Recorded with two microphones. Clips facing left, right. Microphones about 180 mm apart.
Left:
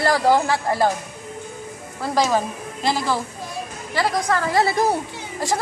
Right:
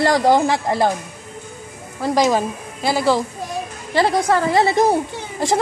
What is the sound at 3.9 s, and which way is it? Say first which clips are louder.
A woman's voice: right 5 dB; 25° right (ahead or behind).